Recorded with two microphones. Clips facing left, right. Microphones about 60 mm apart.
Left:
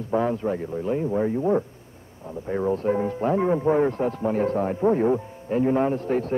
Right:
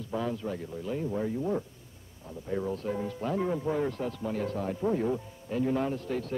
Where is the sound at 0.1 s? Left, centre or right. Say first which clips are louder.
Left 9 dB; left.